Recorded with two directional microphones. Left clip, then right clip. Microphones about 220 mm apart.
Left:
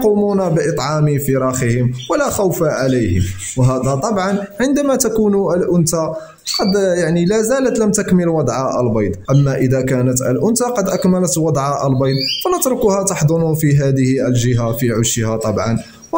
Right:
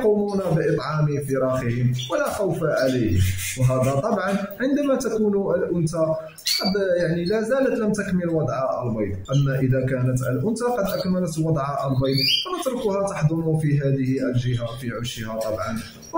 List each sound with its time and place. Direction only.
4.2 s speech: 50° left (ahead or behind)
6.7 s speech: 50° left (ahead or behind)
9.7 s speech: 45° left (ahead or behind)
12.0 s speech: 50° left (ahead or behind)